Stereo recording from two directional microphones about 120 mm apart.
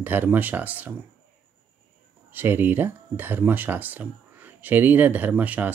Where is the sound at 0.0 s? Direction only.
15° right (ahead or behind).